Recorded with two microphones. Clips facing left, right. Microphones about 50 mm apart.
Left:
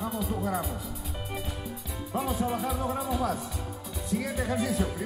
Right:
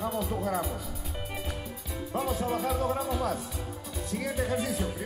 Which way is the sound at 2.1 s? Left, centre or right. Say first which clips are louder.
Even; left.